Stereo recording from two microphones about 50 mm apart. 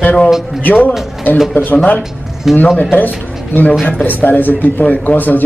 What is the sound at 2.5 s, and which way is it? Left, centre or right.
Speech, centre.